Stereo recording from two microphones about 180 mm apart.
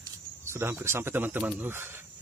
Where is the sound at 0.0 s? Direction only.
15° right (ahead or behind).